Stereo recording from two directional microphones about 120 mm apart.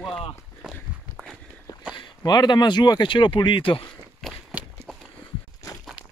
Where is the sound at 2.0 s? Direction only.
40° left (ahead or behind).